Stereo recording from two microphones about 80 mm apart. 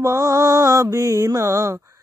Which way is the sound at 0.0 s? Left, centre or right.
Right.